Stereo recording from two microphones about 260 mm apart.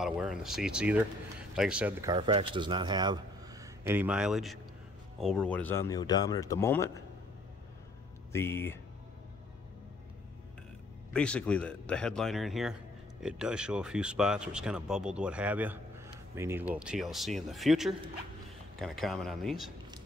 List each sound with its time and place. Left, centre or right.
0.0 s a man's voice: centre
8.3 s speech: centre
11.1 s speech: centre